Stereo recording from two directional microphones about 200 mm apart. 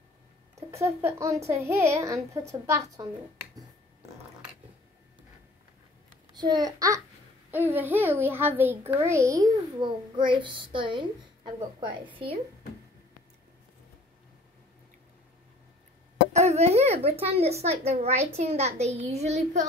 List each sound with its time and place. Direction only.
0.7 s speech: 15° right (ahead or behind)
6.3 s a child's voice: 20° right (ahead or behind)
16.3 s a sound: 30° right (ahead or behind)
17.3 s a child's voice: 30° right (ahead or behind)